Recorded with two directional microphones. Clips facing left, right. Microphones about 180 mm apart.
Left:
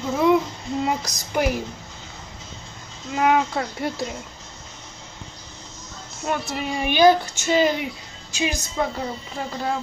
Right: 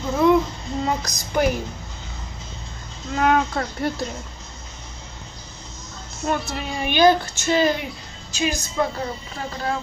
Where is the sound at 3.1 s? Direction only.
10° left (ahead or behind).